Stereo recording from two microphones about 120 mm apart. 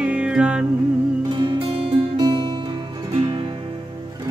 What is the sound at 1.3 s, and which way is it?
Music, 45° right (ahead or behind).